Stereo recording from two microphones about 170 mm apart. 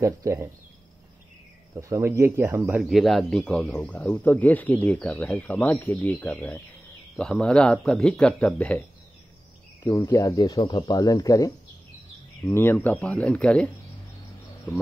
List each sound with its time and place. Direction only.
0.0 s speech: 15° right (ahead or behind)
1.8 s speech: 15° right (ahead or behind)
2.8 s speech: centre (ahead or behind)
9.8 s speech: 20° left (ahead or behind)